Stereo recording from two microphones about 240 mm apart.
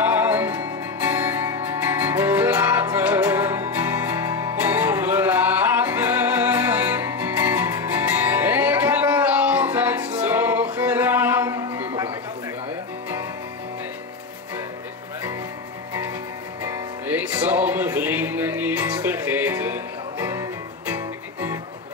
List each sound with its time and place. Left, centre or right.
0.0 s music: centre
17.0 s music: centre